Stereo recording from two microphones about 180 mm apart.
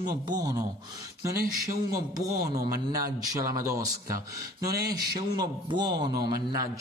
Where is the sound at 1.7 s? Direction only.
20° right (ahead or behind).